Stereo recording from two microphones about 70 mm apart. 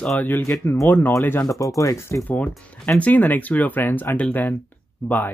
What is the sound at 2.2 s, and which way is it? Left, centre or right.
Speech, left.